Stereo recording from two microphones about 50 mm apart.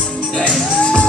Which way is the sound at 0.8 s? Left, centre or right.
Centre.